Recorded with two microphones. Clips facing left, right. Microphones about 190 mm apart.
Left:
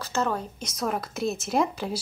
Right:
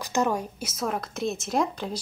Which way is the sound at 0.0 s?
15° right (ahead or behind).